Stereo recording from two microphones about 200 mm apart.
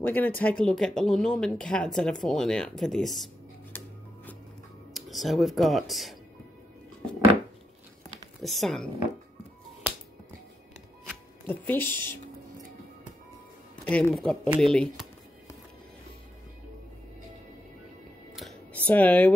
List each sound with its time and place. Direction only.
0.0 s speech: 10° left (ahead or behind)
4.9 s speech: centre (ahead or behind)
8.4 s speech: centre (ahead or behind)
11.4 s speech: 10° left (ahead or behind)
12.0 s music: 20° right (ahead or behind)
13.8 s speech: 5° left (ahead or behind)
18.3 s a sound: centre (ahead or behind)
18.9 s speech: 5° left (ahead or behind)